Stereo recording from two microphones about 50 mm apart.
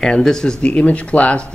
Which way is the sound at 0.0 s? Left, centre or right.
Centre.